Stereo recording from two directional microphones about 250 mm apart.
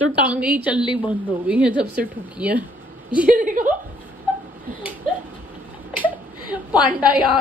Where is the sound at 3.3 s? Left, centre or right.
Right.